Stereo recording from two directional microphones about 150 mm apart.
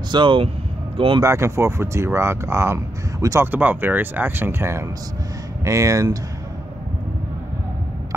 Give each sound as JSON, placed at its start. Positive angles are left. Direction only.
{"t": 0.1, "sound": "speech", "side_deg": -35}
{"t": 1.2, "sound": "speech", "side_deg": -20}